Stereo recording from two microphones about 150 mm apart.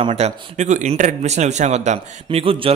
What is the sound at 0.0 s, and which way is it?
Speech, 45° right (ahead or behind).